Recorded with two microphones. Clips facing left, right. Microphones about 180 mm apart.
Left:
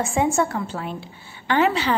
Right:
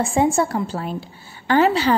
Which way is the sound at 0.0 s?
35° right (ahead or behind).